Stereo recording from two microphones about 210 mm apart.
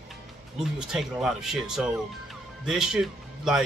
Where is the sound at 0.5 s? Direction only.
5° right (ahead or behind).